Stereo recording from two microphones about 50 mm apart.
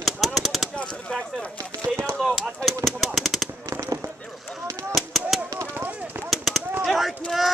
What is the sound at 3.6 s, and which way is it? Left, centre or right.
Fireworks, right.